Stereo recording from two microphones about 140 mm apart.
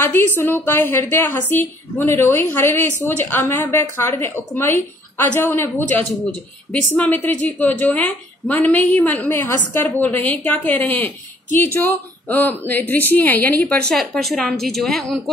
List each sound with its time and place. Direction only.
0.0 s a woman's voice: 15° left (ahead or behind)